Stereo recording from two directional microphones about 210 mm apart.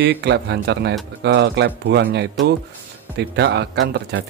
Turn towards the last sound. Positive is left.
turn(degrees=-55)  # may be behind; listen again after turning